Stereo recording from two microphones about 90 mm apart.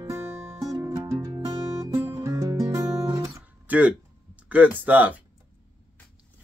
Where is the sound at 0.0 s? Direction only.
25° right (ahead or behind).